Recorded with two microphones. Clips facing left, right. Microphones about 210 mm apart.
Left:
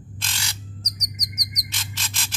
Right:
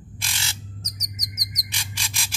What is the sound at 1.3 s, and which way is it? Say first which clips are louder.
Bird: left 1 dB; 10° right (ahead or behind).